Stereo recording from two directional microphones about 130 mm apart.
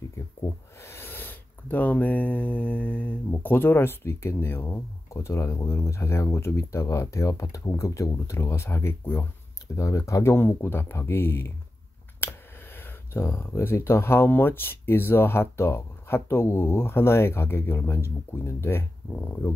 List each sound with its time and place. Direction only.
0.7 s speech: 20° left (ahead or behind)